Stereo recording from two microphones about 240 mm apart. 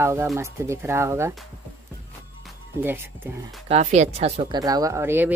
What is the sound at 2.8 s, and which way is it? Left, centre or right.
Speech, centre.